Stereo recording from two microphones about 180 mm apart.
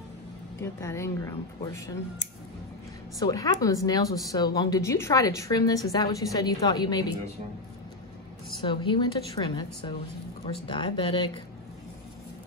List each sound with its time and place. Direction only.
0.6 s speech: 15° left (ahead or behind)
3.2 s speech: 20° left (ahead or behind)
8.6 s speech: 25° left (ahead or behind)